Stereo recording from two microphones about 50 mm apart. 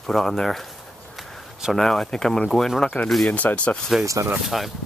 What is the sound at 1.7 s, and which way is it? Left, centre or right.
Speech, centre.